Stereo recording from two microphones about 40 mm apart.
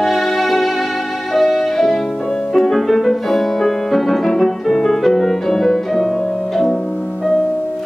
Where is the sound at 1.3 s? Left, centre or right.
Centre.